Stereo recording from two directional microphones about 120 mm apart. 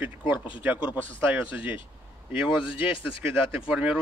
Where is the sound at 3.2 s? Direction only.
10° right (ahead or behind).